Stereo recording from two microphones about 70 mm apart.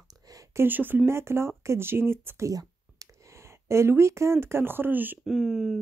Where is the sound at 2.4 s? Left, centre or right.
Right.